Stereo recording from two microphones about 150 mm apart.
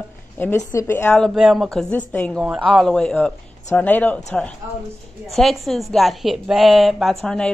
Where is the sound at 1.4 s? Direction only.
Centre (ahead or behind).